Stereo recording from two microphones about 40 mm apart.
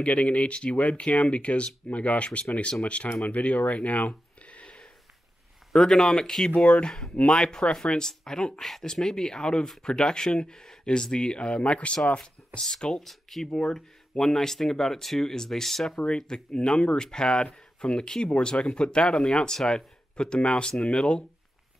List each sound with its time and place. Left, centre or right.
0.0 s speech: left
4.1 s a sound: left
5.7 s speech: centre
6.5 s speech: left
8.1 s speech: centre
13.0 s speech: centre
16.2 s speech: centre